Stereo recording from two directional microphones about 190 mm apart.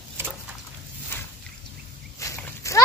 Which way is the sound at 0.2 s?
10° right (ahead or behind).